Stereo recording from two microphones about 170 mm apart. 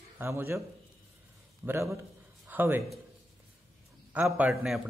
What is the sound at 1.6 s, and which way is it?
A man's voice, 15° right (ahead or behind).